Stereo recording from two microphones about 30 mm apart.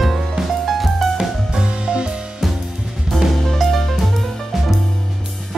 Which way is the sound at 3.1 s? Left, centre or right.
Left.